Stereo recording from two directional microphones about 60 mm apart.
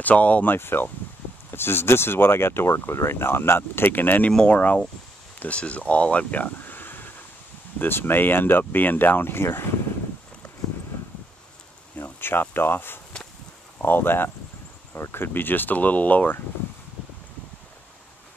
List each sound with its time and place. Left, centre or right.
0.0 s speech: left
0.6 s speech: left
12.0 s speech: left